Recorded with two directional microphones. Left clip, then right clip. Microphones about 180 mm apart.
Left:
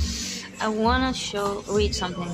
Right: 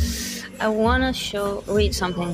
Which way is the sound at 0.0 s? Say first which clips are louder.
Right 2 dB; 15° right (ahead or behind).